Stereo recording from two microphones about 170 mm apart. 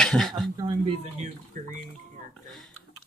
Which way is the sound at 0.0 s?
5° left (ahead or behind).